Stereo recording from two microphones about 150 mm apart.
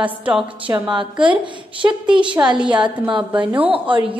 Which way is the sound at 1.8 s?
20° right (ahead or behind).